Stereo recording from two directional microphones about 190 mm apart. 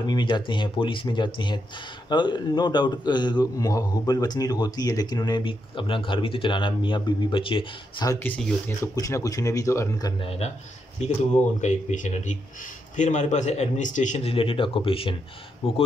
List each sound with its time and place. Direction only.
0.0 s a man's voice: 25° left (ahead or behind)
11.6 s a man's voice: 40° left (ahead or behind)